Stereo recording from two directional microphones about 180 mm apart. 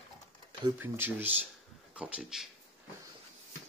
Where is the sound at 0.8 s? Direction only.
10° right (ahead or behind).